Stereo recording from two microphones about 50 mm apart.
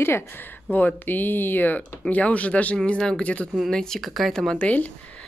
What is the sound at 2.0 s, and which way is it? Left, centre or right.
Speech, left.